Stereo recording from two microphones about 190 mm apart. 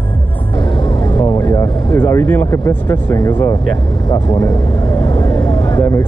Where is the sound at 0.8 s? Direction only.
20° left (ahead or behind).